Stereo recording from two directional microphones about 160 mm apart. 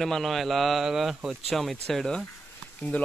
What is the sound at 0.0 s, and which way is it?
Speech, centre (ahead or behind).